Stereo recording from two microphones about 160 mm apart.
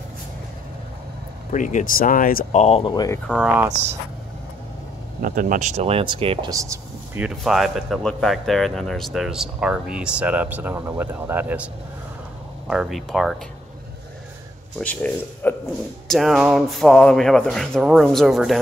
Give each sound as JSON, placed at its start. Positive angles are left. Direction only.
{"t": 1.5, "sound": "speech", "side_deg": 50}
{"t": 2.5, "sound": "speech", "side_deg": 40}
{"t": 2.9, "sound": "speech", "side_deg": 25}
{"t": 3.3, "sound": "speech", "side_deg": -5}
{"t": 5.2, "sound": "speech", "side_deg": -60}
{"t": 6.5, "sound": "speech", "side_deg": -20}
{"t": 7.2, "sound": "speech", "side_deg": 0}
{"t": 14.8, "sound": "speech", "side_deg": 10}